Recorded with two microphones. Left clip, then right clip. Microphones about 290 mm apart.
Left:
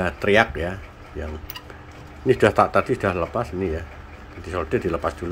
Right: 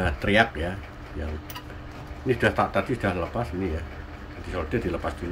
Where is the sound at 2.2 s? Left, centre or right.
Left.